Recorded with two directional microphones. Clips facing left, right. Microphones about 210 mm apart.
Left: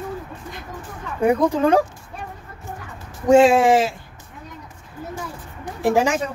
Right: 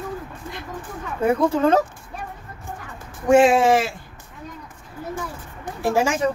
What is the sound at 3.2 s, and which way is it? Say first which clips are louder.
Speech: left 2 dB; 15° left (ahead or behind).